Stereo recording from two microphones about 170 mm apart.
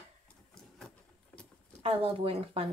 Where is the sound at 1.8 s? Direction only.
35° right (ahead or behind).